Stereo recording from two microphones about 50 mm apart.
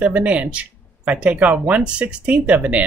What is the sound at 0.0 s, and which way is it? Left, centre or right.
Speech, right.